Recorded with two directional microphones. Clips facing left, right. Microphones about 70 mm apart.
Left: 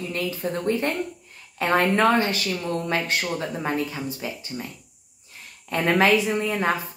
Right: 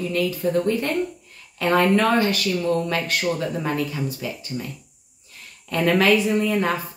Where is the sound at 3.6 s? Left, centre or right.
Left.